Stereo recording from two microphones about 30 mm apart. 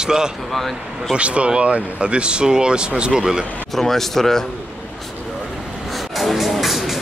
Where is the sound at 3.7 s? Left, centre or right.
Centre.